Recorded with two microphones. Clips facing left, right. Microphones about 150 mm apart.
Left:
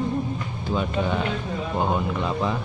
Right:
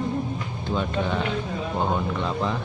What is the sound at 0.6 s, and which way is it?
Speech, 5° left (ahead or behind).